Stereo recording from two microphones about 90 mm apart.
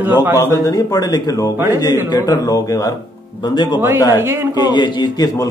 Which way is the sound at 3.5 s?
55° left (ahead or behind).